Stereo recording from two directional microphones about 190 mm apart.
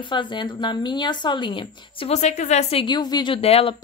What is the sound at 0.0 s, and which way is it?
Speech, 25° left (ahead or behind).